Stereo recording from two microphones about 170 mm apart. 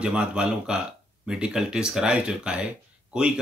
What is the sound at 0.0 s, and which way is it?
Speech, 5° right (ahead or behind).